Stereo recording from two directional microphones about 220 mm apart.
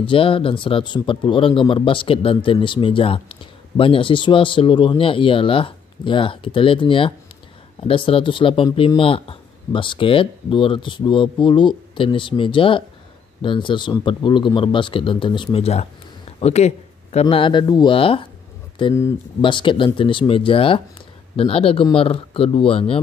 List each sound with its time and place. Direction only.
0.0 s speech: 25° left (ahead or behind)